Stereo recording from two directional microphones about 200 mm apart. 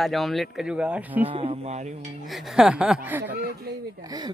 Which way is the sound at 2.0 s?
Centre (ahead or behind).